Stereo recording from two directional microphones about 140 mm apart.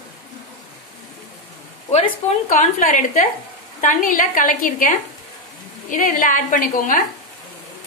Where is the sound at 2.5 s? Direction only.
65° left (ahead or behind).